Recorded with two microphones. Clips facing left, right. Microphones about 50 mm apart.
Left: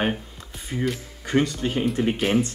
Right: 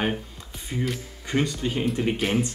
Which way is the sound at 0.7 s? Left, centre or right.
Centre.